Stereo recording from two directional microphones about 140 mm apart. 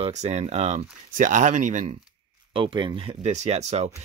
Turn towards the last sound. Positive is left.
turn(degrees=-55)  # may be behind; listen again after turning